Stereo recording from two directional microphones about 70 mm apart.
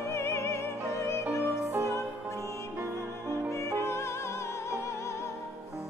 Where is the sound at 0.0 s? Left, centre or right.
Left.